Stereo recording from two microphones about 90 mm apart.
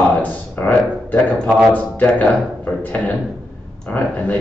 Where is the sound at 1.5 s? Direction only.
10° right (ahead or behind).